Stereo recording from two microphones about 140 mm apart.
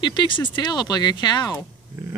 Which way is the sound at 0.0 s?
35° left (ahead or behind).